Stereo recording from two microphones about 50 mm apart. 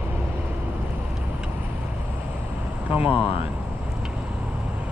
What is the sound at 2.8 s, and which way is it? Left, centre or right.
Speech, right.